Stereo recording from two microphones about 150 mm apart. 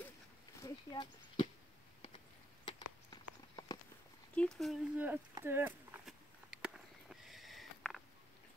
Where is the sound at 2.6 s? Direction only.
30° left (ahead or behind).